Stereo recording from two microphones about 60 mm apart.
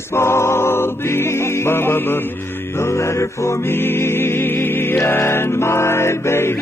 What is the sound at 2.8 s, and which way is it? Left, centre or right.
Music, left.